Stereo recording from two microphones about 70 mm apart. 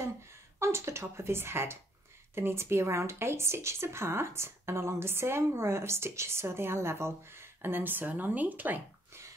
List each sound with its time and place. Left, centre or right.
0.6 s speech: right